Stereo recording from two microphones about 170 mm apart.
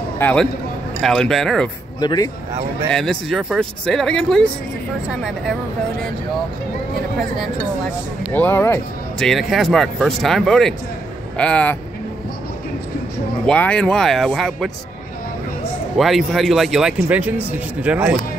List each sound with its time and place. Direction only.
0.2 s speech: 10° left (ahead or behind)
2.0 s speech: 25° left (ahead or behind)
2.9 s speech: 5° left (ahead or behind)
8.3 s speech: 10° left (ahead or behind)
9.2 s speech: centre (ahead or behind)
13.5 s speech: 5° left (ahead or behind)
16.0 s speech: centre (ahead or behind)